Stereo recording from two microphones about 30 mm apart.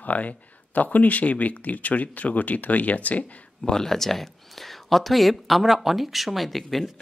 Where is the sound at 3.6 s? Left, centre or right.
Centre.